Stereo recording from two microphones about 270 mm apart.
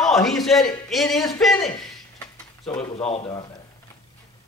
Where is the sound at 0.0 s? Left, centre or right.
Centre.